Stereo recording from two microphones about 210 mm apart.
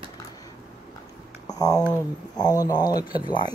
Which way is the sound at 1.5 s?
15° left (ahead or behind).